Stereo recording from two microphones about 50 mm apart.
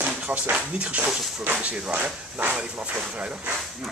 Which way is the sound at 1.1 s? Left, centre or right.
Centre.